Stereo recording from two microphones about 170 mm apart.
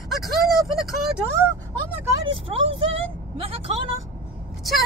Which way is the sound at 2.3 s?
35° right (ahead or behind).